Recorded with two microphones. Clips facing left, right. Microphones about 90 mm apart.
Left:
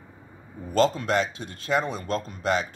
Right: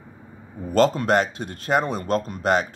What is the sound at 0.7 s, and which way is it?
Speech, 55° right (ahead or behind).